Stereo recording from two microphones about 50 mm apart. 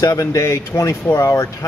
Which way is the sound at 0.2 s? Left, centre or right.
Left.